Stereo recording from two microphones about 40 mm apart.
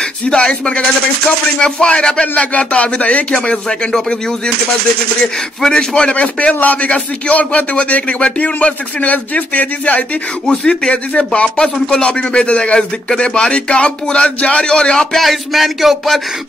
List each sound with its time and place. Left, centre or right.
0.3 s speech: centre; by 3.3 s left
3.3 s speech: left
5.2 s speech: centre
6.1 s speech: left
10.4 s speech: left
15.1 s speech: centre